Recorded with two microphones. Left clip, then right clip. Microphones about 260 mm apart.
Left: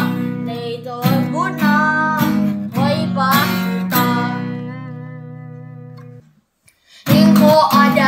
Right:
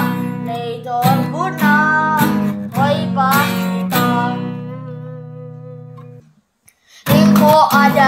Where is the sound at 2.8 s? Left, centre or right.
Centre.